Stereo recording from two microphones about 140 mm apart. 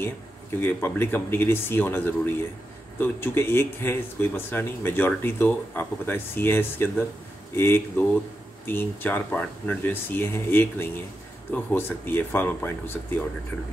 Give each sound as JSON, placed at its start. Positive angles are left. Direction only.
{"t": 0.6, "sound": "a man's voice", "side_deg": 15}